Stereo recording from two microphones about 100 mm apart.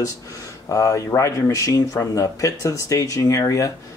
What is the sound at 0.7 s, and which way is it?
Speech, 35° left (ahead or behind).